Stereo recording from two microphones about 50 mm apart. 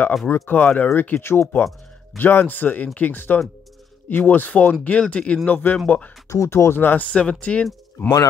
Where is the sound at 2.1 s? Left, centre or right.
Left.